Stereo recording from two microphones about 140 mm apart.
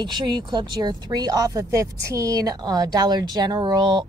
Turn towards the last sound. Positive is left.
turn(degrees=-30)  # may be behind; listen again after turning